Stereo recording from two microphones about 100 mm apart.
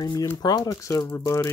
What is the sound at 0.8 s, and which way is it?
Speech, 30° left (ahead or behind).